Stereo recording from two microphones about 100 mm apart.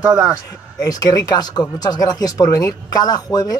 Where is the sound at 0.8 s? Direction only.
40° left (ahead or behind).